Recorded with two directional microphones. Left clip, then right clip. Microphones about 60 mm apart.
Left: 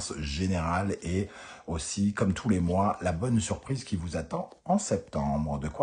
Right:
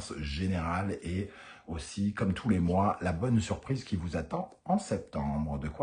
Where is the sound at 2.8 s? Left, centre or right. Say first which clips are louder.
Left 2 dB; centre.